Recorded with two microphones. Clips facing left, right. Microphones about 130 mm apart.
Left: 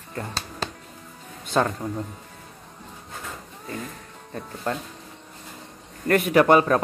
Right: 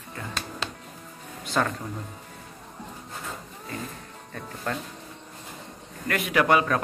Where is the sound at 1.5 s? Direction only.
30° left (ahead or behind).